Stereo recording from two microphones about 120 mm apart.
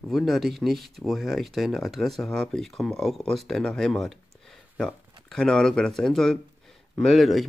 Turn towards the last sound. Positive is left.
turn(degrees=0)  # may be behind; listen again after turning